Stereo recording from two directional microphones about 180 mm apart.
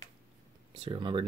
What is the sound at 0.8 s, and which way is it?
Speech, 25° right (ahead or behind).